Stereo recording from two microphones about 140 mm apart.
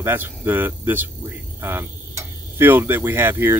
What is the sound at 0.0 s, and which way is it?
Speech, 15° right (ahead or behind).